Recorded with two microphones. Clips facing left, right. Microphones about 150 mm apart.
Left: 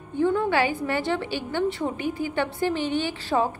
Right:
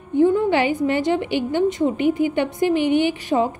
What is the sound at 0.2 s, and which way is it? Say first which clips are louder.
A woman's voice: right 5 dB; 20° right (ahead or behind).